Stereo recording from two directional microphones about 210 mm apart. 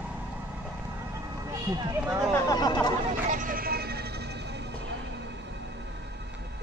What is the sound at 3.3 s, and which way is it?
Music, 40° right (ahead or behind).